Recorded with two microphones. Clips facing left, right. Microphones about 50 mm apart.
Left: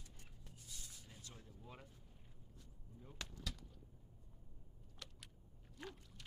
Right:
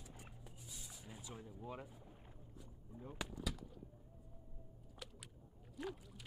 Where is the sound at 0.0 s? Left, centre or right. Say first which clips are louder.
Right 6 dB; centre.